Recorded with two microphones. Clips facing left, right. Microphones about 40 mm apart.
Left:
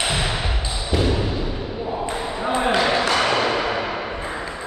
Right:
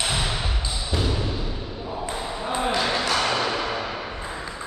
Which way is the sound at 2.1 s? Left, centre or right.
Left.